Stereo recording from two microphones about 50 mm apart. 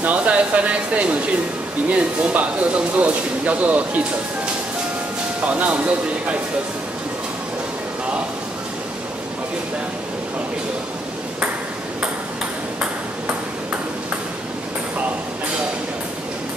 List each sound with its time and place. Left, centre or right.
0.0 s speech: right
5.4 s speech: right